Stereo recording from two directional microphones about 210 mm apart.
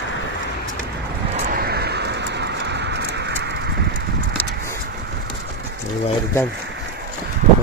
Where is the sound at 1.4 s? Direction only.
45° right (ahead or behind).